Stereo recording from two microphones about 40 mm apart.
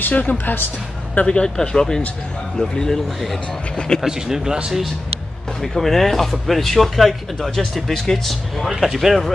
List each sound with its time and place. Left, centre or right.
0.1 s speech: left
1.1 s speech: left
4.0 s speech: centre
5.6 s speech: centre
8.7 s speech: centre